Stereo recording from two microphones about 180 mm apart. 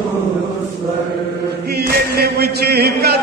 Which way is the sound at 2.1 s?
60° right (ahead or behind).